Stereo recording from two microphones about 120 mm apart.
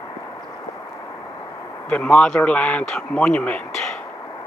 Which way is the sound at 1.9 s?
10° left (ahead or behind).